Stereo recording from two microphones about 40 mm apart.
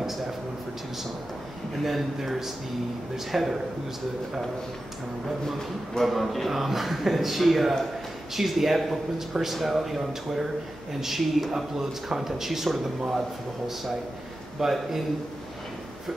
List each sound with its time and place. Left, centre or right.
1.9 s a man's voice: centre
6.0 s a man's voice: centre
14.6 s a man's voice: centre